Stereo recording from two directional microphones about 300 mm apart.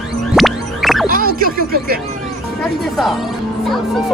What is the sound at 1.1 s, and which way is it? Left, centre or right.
Music, right.